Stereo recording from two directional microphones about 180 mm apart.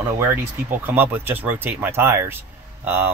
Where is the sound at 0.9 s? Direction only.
10° right (ahead or behind).